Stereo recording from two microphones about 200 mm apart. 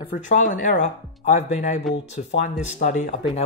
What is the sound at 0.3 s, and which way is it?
Speech, 40° left (ahead or behind).